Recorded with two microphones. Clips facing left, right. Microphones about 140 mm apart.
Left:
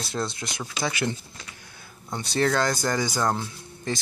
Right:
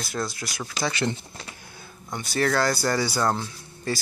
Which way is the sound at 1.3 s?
35° right (ahead or behind).